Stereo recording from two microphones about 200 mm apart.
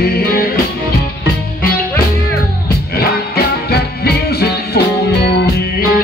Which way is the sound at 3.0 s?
50° left (ahead or behind).